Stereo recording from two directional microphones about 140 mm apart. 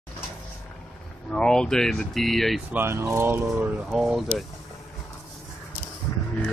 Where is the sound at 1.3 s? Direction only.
5° left (ahead or behind).